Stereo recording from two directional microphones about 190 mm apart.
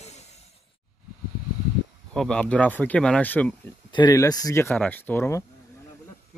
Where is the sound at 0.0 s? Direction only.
35° left (ahead or behind).